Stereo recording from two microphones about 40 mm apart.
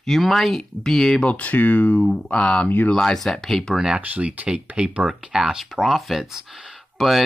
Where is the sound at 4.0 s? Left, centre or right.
Right.